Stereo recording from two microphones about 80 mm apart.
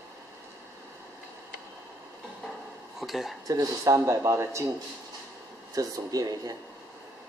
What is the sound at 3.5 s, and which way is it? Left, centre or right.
Speech, right.